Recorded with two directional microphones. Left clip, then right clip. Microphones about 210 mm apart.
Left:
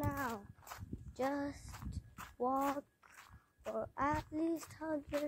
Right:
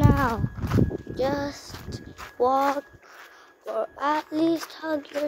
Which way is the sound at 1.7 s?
40° left (ahead or behind).